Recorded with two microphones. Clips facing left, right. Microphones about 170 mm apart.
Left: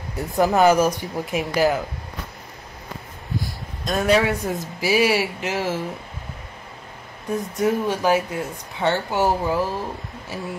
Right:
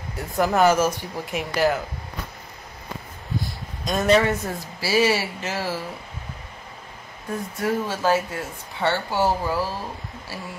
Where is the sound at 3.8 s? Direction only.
5° left (ahead or behind).